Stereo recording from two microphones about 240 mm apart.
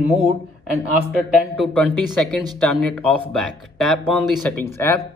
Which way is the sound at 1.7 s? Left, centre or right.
Centre.